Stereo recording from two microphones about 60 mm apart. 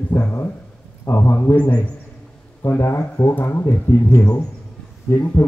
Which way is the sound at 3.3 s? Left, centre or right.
Left.